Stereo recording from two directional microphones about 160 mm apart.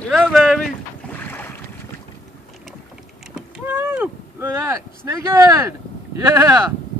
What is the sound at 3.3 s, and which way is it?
Speech, 10° right (ahead or behind).